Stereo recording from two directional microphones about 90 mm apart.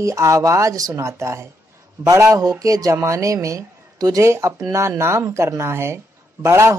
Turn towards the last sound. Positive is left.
turn(degrees=-30)  # may be behind; listen again after turning